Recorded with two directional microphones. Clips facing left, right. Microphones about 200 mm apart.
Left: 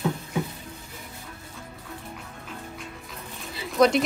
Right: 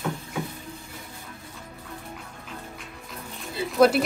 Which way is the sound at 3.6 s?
5° right (ahead or behind).